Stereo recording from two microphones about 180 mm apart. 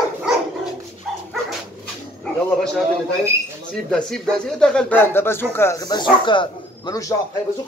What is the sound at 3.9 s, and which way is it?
Speech, 5° left (ahead or behind).